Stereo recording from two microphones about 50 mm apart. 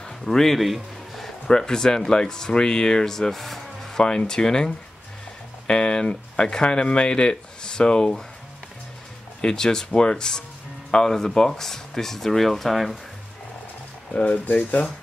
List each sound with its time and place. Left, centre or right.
0.2 s a sound: centre
1.5 s speech: centre
9.4 s speech: centre
14.1 s speech: left